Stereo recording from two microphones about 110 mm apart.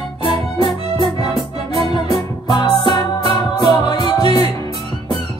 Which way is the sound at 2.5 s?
45° left (ahead or behind).